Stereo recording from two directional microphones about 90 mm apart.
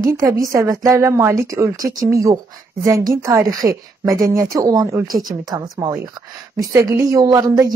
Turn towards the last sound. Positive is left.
turn(degrees=-45)  # may be behind; listen again after turning